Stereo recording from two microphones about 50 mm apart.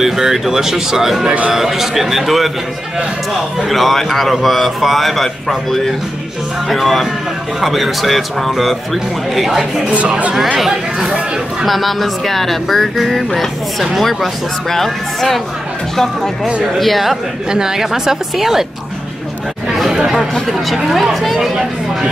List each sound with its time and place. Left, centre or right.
0.0 s speech: centre
3.6 s speech: centre
9.8 s speech: right
10.3 s speech: centre
16.7 s speech: centre
17.5 s speech: centre
19.7 s chatter: centre
20.0 s speech: centre